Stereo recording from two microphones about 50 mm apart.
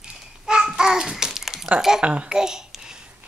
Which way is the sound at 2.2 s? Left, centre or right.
Centre.